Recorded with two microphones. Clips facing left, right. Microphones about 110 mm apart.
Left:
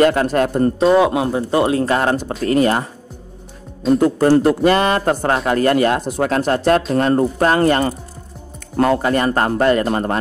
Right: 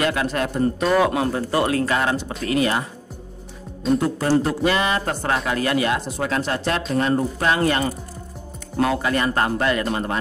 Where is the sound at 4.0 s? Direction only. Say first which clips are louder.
Left 8 dB; 55° left (ahead or behind).